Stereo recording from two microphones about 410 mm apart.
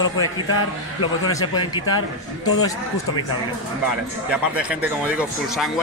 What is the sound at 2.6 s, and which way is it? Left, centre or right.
Speech, centre.